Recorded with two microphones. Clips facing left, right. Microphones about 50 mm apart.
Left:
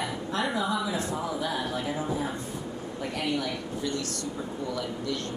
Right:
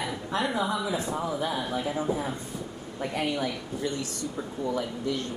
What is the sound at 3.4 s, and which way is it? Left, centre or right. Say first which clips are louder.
Speech: right 1 dB; right.